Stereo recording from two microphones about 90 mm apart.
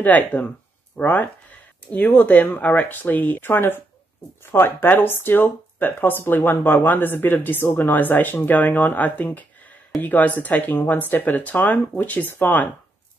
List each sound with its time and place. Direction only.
0.0 s speech: 15° left (ahead or behind)